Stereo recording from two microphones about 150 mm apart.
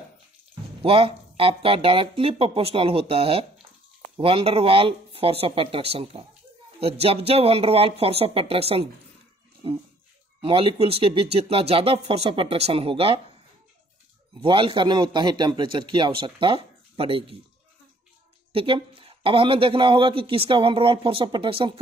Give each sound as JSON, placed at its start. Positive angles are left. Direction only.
{"t": 0.8, "sound": "speech", "side_deg": -35}
{"t": 10.4, "sound": "speech", "side_deg": -35}
{"t": 14.4, "sound": "speech", "side_deg": -35}
{"t": 18.5, "sound": "speech", "side_deg": -35}